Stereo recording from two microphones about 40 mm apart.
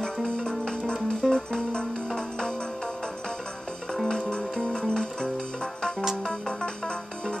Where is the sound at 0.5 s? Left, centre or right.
Centre.